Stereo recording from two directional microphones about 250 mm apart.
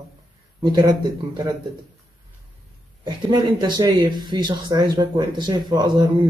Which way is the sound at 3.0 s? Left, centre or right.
Centre.